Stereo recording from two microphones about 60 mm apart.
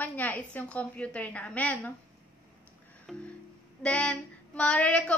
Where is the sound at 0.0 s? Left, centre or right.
Left.